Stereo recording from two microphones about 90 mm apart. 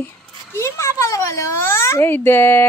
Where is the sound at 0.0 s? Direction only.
30° left (ahead or behind).